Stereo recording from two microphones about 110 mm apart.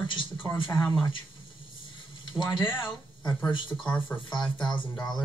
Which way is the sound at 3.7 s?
5° left (ahead or behind).